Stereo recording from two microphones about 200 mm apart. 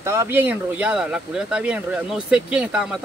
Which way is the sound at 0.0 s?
15° right (ahead or behind).